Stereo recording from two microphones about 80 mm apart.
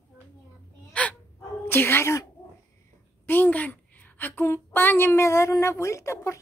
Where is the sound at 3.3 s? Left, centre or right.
Left.